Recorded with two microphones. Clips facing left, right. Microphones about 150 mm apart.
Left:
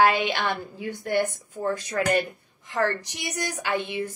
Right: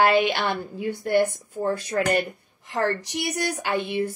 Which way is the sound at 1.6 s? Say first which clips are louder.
Right 2 dB; 30° right (ahead or behind).